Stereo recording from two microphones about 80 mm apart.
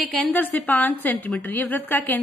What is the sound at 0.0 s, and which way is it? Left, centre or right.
Speech, centre.